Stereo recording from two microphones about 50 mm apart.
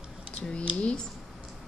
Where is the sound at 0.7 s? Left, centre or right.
Left.